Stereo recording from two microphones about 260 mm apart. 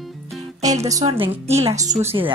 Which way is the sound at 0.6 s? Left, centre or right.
Centre.